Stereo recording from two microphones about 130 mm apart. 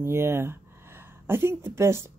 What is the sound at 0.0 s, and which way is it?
Speech, 20° right (ahead or behind).